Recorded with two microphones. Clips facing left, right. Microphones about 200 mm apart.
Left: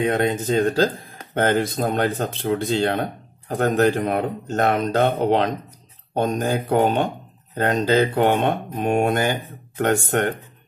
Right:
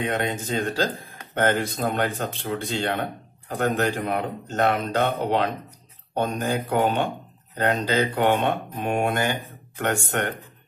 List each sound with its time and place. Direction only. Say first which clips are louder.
0.0 s speech: left 6 dB; 40° left (ahead or behind)